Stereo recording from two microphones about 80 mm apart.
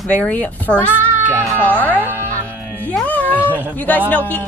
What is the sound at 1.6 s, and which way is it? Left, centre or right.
Speech, left.